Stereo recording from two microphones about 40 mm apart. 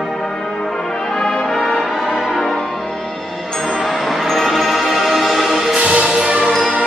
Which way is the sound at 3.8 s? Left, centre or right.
Centre.